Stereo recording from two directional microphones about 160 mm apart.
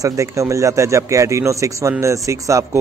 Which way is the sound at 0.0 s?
20° right (ahead or behind).